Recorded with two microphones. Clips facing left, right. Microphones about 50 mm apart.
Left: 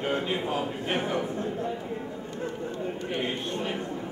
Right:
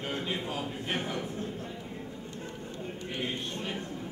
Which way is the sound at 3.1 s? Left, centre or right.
Centre.